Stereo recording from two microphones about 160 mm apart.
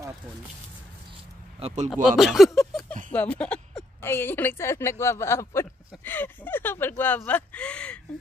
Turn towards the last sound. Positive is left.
turn(degrees=5)  # may be behind; listen again after turning